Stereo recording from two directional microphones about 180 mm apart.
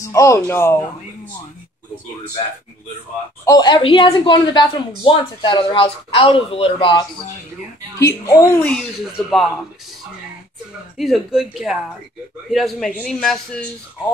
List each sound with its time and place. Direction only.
0.0 s speech: 15° left (ahead or behind)
3.4 s speech: 20° left (ahead or behind)
9.3 s a man's voice: centre (ahead or behind)
11.0 s a man's voice: centre (ahead or behind)